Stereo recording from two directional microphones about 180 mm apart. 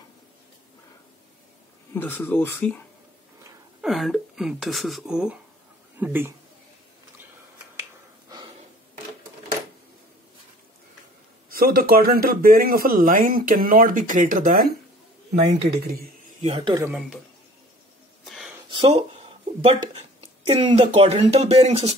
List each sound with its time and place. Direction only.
2.0 s speech: 10° left (ahead or behind)
3.8 s speech: centre (ahead or behind)
11.5 s a man's voice: 55° right (ahead or behind)
15.7 s speech: 65° right (ahead or behind)
16.4 s speech: 30° right (ahead or behind)
18.2 s a sound: centre (ahead or behind)
18.7 s speech: 30° right (ahead or behind)